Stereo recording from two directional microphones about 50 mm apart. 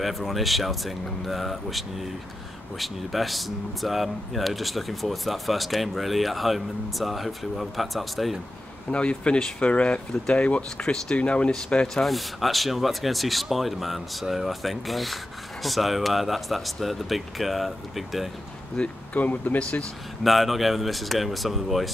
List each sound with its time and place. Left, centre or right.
0.0 s speech: centre
8.9 s speech: left
10.8 s speech: centre
11.9 s speech: centre
18.8 s speech: centre
19.1 s speech: left
20.2 s speech: centre